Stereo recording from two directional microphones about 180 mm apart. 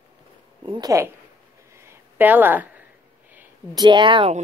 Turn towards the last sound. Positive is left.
turn(degrees=-30)  # may be behind; listen again after turning